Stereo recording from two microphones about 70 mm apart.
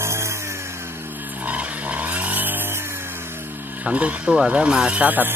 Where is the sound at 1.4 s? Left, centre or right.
Right.